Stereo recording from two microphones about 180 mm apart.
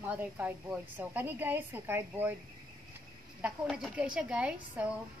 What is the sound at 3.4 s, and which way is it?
A woman's voice, centre (ahead or behind).